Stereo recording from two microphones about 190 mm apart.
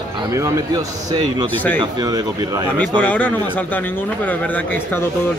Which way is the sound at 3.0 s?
10° left (ahead or behind).